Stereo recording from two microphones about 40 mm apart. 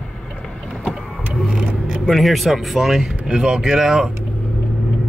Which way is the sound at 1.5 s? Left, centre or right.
Right.